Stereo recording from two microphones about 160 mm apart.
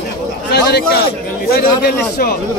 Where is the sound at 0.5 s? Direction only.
90° left.